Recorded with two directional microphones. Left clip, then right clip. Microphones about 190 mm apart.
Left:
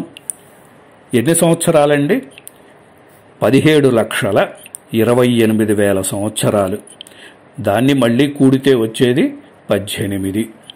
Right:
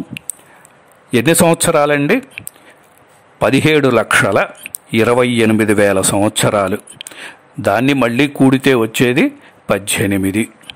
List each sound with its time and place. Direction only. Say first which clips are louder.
1.1 s a man's voice: right 2 dB; 35° right (ahead or behind)
3.3 s a man's voice: left 1 dB; 35° right (ahead or behind)